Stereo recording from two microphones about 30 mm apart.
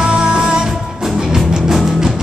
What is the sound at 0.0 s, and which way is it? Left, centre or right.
Music, right.